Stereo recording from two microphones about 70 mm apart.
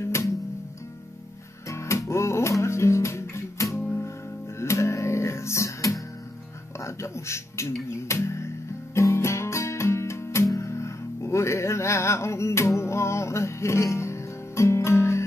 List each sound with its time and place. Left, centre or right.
0.0 s music: left
1.7 s music: left